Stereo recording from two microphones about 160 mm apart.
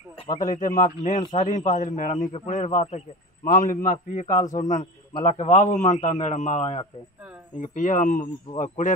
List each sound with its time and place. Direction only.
0.4 s a man's voice: 55° left (ahead or behind)
7.5 s a man's voice: 55° left (ahead or behind)